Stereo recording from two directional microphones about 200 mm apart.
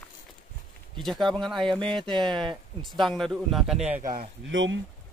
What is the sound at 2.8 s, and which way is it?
Speech, centre (ahead or behind).